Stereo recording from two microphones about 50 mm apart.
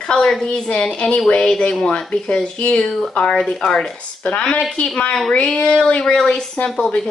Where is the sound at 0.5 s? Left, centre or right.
Centre.